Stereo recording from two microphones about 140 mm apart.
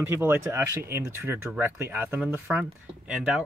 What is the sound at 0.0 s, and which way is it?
Speech, 15° right (ahead or behind).